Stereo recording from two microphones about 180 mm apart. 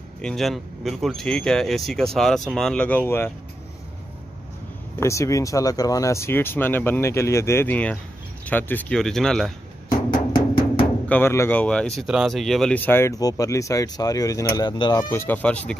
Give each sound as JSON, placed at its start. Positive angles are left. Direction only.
{"t": 0.2, "sound": "speech", "side_deg": 0}
{"t": 5.0, "sound": "speech", "side_deg": 15}
{"t": 10.1, "sound": "music", "side_deg": 25}
{"t": 11.1, "sound": "speech", "side_deg": 10}
{"t": 15.0, "sound": "speech", "side_deg": 10}